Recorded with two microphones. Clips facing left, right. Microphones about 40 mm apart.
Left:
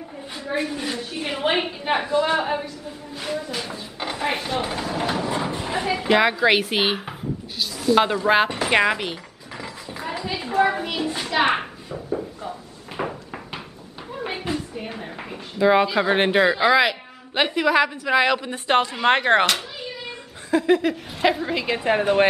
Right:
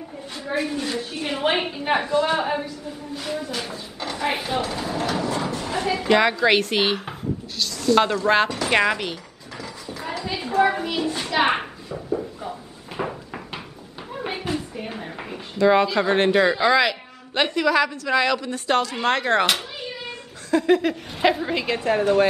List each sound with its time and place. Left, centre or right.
0.5 s a woman's voice: centre
3.7 s a woman's voice: centre
4.3 s a woman's voice: centre
4.6 s a woman's voice: centre
8.6 s mechanisms: centre
10.2 s a child's voice: centre
12.2 s a sound: centre
15.5 s speech: centre; by 19.4 s left
19.4 s cat: centre
20.5 s a woman's voice: centre
21.8 s speech: left